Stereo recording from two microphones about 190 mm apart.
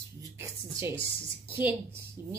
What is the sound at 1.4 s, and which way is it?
Speech, 10° right (ahead or behind).